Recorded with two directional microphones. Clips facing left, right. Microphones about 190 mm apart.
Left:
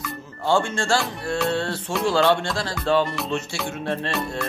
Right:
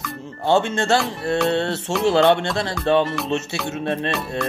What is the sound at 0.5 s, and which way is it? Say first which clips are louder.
Speech: right 3 dB; 20° right (ahead or behind).